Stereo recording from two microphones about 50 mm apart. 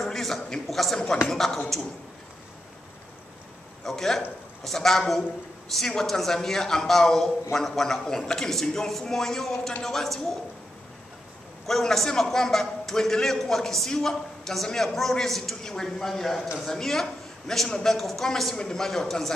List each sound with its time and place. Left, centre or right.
0.0 s a sound: centre
3.8 s a man's voice: centre
11.6 s a man's voice: centre
17.9 s a man's voice: centre